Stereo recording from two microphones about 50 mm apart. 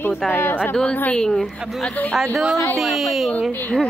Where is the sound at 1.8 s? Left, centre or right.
Left.